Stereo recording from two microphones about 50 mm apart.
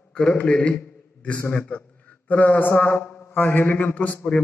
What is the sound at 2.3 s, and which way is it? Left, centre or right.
Mantra, left.